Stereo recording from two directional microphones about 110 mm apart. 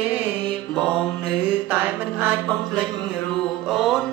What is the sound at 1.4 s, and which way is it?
Music, 15° right (ahead or behind).